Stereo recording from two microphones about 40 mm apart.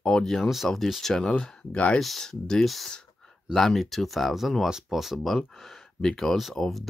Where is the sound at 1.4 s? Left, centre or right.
Left.